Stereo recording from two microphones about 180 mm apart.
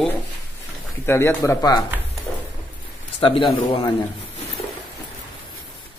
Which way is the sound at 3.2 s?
30° left (ahead or behind).